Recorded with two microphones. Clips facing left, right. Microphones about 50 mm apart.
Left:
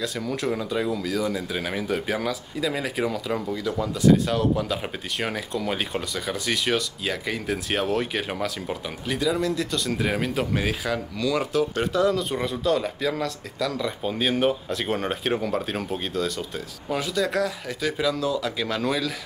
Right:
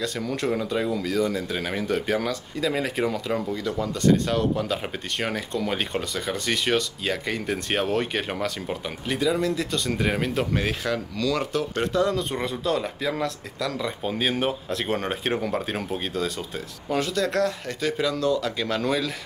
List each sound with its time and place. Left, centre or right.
0.0 s speech: centre